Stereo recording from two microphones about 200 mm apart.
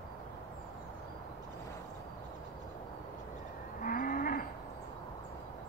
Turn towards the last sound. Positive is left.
turn(degrees=45)  # may be behind; listen again after turning